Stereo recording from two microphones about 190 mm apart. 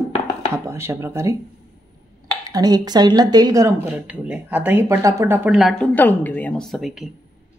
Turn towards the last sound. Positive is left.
turn(degrees=0)  # may be behind; listen again after turning